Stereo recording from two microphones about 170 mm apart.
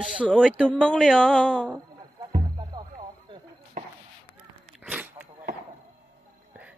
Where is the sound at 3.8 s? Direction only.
45° right (ahead or behind).